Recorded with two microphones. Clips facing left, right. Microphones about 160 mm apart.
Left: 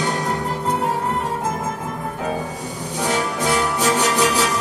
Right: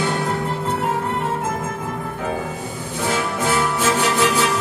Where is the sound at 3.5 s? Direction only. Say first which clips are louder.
Even; 40° left (ahead or behind).